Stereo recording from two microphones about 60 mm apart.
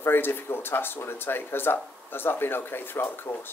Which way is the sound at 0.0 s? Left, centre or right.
Left.